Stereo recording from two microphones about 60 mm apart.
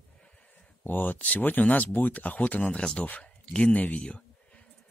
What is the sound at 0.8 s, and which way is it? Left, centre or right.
Speech, left.